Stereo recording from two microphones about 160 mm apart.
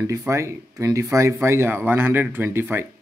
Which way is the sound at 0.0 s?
20° right (ahead or behind).